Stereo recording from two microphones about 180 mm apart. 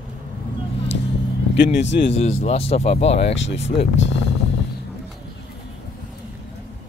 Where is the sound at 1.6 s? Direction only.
80° left.